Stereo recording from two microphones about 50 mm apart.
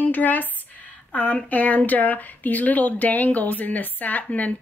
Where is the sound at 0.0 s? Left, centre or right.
Left.